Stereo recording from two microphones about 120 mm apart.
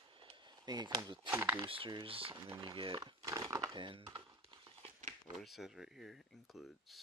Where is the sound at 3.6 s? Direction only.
45° right (ahead or behind).